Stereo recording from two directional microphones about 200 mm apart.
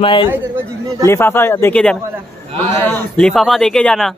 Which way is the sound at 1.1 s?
10° left (ahead or behind).